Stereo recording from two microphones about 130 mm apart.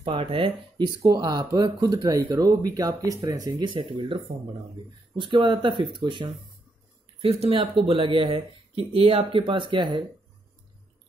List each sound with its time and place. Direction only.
0.0 s speech: 45° right (ahead or behind)
0.8 s speech: 30° right (ahead or behind)